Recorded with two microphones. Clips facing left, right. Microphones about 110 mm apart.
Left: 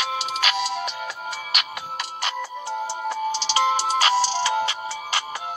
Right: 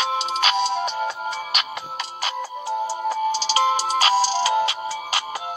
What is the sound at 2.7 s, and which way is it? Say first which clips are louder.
Music: right 4 dB; 40° right (ahead or behind).